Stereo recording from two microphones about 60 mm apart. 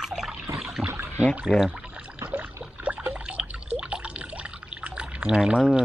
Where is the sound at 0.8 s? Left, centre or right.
Right.